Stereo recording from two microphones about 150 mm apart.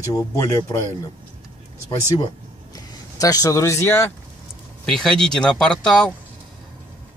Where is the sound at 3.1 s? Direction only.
25° left (ahead or behind).